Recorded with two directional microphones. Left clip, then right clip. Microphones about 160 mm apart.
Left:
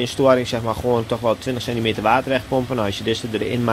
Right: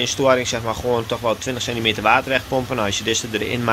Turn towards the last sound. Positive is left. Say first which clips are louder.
# right 1 dB
turn(degrees=15)  # may be behind; listen again after turning